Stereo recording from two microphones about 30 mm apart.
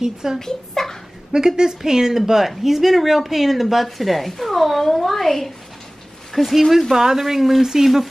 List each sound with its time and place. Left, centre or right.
0.0 s a woman's voice: centre
0.4 s a child's voice: centre
1.3 s a woman's voice: right; by 8.1 s centre